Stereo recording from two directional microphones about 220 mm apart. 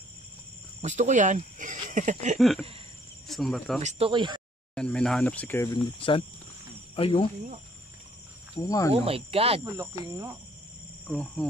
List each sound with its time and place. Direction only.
0.8 s speech: 35° right (ahead or behind)
1.9 s a sound: 35° right (ahead or behind)
2.3 s speech: centre (ahead or behind)
3.8 s speech: 25° right (ahead or behind)
4.7 s speech: 5° left (ahead or behind)
5.9 s speech: 25° left (ahead or behind)
8.5 s cricket: 15° left (ahead or behind)
8.9 s speech: 25° right (ahead or behind)
9.8 s speech: 15° right (ahead or behind)
11.1 s speech: centre (ahead or behind)